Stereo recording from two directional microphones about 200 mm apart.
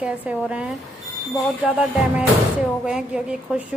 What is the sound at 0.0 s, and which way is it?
A woman's voice, 5° right (ahead or behind).